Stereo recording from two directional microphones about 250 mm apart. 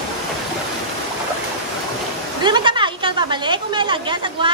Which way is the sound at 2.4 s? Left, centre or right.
Centre.